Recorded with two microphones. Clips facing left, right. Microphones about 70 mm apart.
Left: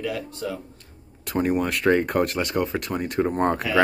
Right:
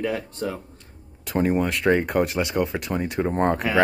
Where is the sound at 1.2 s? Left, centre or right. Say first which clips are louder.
Right 1 dB; centre.